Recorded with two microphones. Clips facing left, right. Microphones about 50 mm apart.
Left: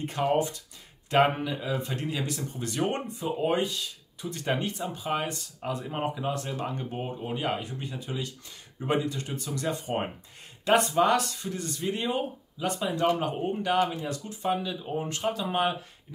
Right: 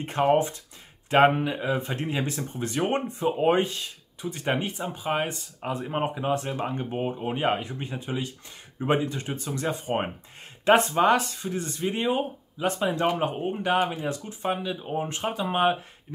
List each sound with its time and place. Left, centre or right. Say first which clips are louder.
0.0 s speech: right 4 dB; right
4.3 s speech: right 2 dB; right